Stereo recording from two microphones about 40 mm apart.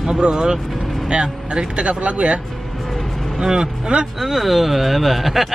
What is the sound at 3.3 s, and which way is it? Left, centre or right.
Speech, centre.